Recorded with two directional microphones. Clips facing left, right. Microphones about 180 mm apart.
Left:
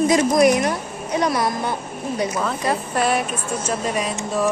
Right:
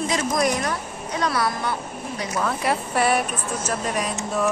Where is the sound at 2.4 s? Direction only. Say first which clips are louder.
Left 1 dB; 5° right (ahead or behind).